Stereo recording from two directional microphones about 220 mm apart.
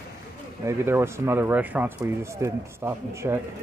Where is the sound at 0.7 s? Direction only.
10° right (ahead or behind).